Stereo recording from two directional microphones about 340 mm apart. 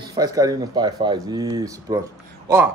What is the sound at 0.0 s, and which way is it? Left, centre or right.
Speech, centre.